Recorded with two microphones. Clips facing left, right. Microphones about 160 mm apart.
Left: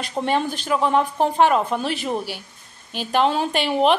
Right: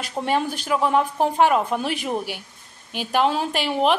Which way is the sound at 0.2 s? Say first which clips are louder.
Left 1 dB; 5° right (ahead or behind).